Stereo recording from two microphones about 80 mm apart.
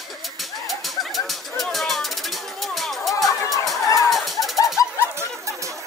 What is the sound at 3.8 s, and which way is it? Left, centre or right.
Music, left.